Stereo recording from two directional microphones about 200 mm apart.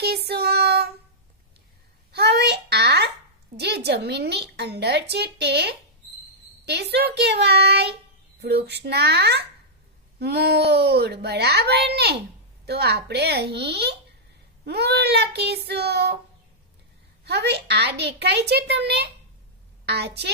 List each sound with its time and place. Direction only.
0.0 s child singing: 55° right (ahead or behind)
2.1 s a sound: 55° right (ahead or behind)
3.5 s speech: 55° right (ahead or behind)
17.2 s a woman's voice: 55° right (ahead or behind)